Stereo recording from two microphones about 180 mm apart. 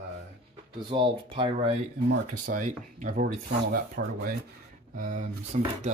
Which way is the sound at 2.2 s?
45° right (ahead or behind).